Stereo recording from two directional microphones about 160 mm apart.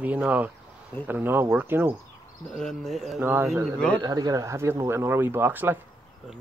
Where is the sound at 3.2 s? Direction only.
15° right (ahead or behind).